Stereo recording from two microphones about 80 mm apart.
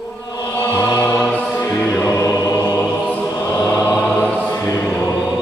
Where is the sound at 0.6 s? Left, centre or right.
Left.